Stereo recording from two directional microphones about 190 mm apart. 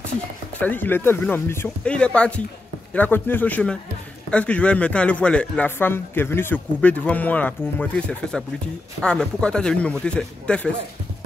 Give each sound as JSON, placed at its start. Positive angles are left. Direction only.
{"t": 0.6, "sound": "a man's voice", "side_deg": 10}